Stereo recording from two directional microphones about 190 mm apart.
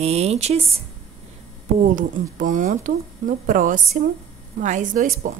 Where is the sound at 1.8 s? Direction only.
45° right (ahead or behind).